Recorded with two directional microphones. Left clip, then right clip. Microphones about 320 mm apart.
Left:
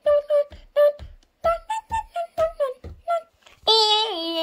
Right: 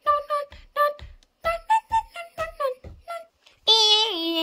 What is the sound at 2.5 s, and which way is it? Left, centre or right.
Child singing, centre.